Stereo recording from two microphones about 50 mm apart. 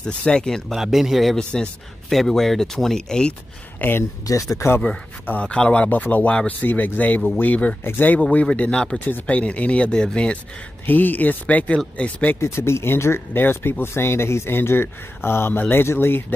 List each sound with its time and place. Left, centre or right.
0.0 s speech: centre
0.7 s speech: centre
1.3 s speech: centre
2.0 s speech: centre
3.8 s speech: left
4.6 s speech: left
5.4 s speech: left
5.9 s speech: left; by 8.9 s centre
9.0 s speech: left
10.9 s speech: left
12.4 s speech: left